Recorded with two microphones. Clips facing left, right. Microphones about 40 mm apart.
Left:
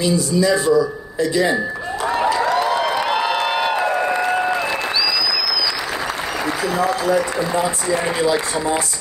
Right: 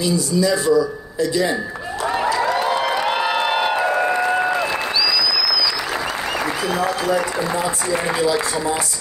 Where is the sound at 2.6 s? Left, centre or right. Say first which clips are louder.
Left 1 dB; centre.